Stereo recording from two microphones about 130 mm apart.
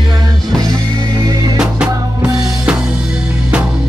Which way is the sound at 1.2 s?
30° right (ahead or behind).